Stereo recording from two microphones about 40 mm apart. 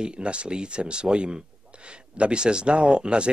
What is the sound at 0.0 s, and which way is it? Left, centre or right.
A man's voice, right.